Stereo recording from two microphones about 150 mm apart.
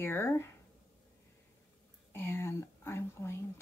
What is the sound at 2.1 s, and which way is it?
Speech, 15° left (ahead or behind).